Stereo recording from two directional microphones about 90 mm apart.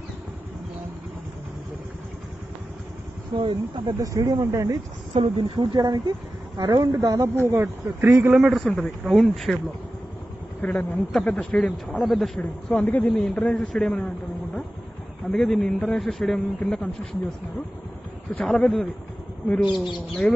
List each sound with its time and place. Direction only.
3.3 s speech: 70° right (ahead or behind)
4.0 s speech: 40° right (ahead or behind)
5.1 s speech: 75° right (ahead or behind)
5.8 s speech: 50° right (ahead or behind)
7.3 s speech: 25° right (ahead or behind)
8.4 s a man's voice: 5° right (ahead or behind)
10.6 s a man's voice: 20° left (ahead or behind)
11.1 s a man's voice: 5° left (ahead or behind)
12.0 s a man's voice: centre (ahead or behind)
12.6 s a man's voice: 15° left (ahead or behind)
15.3 s a man's voice: 5° left (ahead or behind)
18.4 s a man's voice: 5° left (ahead or behind)
19.6 s speech: 10° right (ahead or behind)
20.2 s a man's voice: 10° left (ahead or behind)